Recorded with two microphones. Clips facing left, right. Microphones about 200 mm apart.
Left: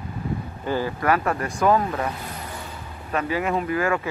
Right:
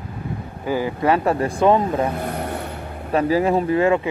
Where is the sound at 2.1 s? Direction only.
60° right (ahead or behind).